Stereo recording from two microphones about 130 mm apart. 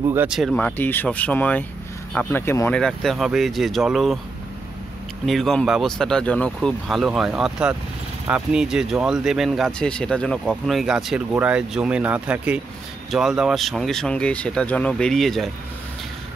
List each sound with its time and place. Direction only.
0.0 s speech: 15° right (ahead or behind)
0.3 s speech: 5° right (ahead or behind)
0.6 s speech: 15° left (ahead or behind)
2.7 s speech: 5° left (ahead or behind)
5.2 s speech: centre (ahead or behind)